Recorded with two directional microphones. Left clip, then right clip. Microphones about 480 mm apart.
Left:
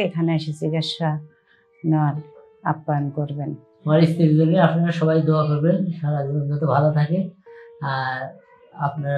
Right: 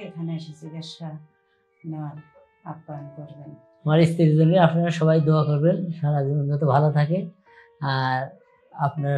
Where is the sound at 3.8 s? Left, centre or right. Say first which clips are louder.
Left 2 dB; right.